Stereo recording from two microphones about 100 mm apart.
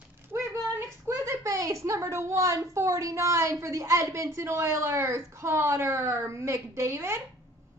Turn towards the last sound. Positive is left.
turn(degrees=-30)  # may be behind; listen again after turning